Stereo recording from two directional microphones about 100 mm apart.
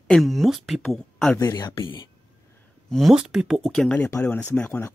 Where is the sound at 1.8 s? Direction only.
55° left (ahead or behind).